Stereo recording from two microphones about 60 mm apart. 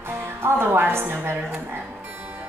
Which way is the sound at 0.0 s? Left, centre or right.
Right.